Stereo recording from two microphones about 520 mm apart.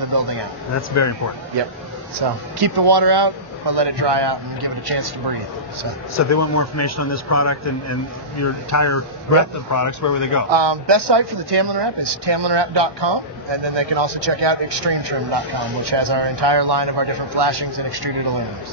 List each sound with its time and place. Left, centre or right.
0.1 s speech: right
0.7 s a man's voice: left
2.1 s speech: right
6.1 s a man's voice: left
10.5 s speech: right